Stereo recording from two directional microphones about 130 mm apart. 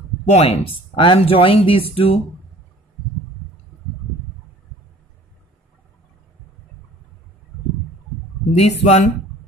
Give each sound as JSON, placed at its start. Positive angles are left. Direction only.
{"t": 0.2, "sound": "speech", "side_deg": 60}
{"t": 8.5, "sound": "speech", "side_deg": 55}